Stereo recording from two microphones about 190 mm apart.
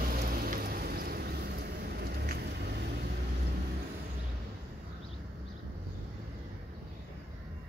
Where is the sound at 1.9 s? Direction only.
55° right (ahead or behind).